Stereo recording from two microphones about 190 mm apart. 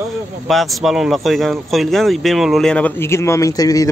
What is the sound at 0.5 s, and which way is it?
Speech, centre (ahead or behind).